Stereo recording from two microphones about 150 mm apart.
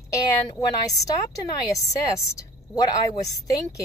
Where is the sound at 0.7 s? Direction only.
25° left (ahead or behind).